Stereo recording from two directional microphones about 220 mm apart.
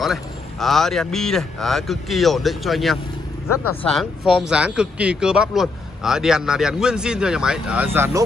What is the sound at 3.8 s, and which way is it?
A man's voice, centre (ahead or behind).